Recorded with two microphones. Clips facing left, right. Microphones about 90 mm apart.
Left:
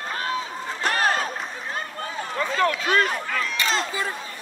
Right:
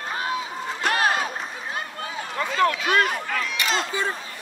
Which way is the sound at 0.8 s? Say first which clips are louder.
Even; 40° left (ahead or behind).